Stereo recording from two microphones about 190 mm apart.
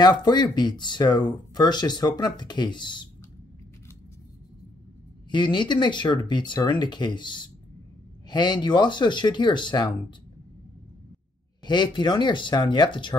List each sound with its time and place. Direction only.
0.0 s speech: 25° left (ahead or behind)
5.3 s speech: 25° left (ahead or behind)
11.6 s speech: 25° left (ahead or behind)